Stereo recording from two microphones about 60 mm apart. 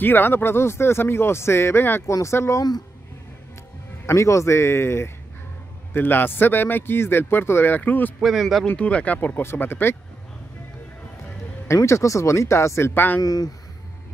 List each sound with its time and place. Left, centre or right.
0.0 s speech: left
2.2 s speech: left
4.0 s a man's voice: left
8.2 s speech: centre
8.6 s speech: left
9.4 s a man's voice: left
11.6 s speech: left
13.2 s speech: left